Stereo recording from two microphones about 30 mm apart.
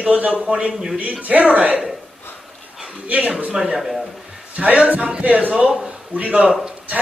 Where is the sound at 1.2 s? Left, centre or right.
Right.